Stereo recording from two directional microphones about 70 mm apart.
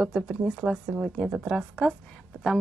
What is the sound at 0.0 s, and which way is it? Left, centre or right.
Speech, centre.